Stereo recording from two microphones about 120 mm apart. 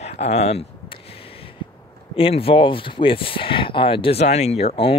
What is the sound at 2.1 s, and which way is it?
Speech, 50° left (ahead or behind).